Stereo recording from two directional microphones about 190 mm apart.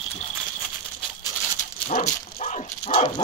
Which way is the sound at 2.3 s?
35° left (ahead or behind).